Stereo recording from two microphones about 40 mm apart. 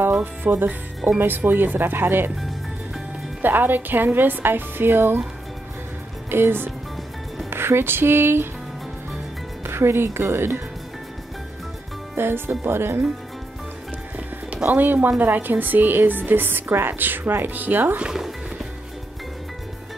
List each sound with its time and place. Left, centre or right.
0.2 s a woman's voice: right
3.4 s a woman's voice: right
6.3 s speech: right
7.4 s speech: right
9.7 s speech: right
12.2 s speech: right
14.7 s a woman's voice: right